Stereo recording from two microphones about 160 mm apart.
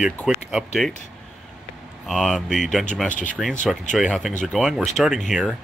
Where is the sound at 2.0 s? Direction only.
Centre (ahead or behind).